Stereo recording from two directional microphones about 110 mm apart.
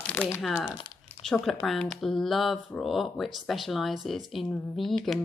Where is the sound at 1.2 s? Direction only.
5° left (ahead or behind).